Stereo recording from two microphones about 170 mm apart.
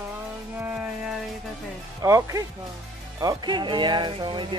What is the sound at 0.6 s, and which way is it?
Speech, 5° right (ahead or behind).